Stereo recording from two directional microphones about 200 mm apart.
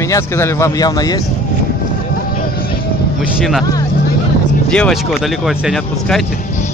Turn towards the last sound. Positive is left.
turn(degrees=0)  # may be behind; listen again after turning